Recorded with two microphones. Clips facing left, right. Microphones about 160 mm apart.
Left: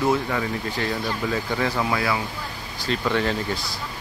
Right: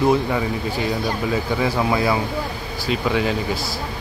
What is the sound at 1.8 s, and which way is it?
Speech, 25° right (ahead or behind).